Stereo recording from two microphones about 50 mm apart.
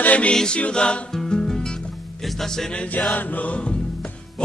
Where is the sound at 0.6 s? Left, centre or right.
Left.